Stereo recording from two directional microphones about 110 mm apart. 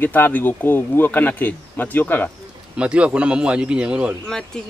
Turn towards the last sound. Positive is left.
turn(degrees=5)  # may be behind; listen again after turning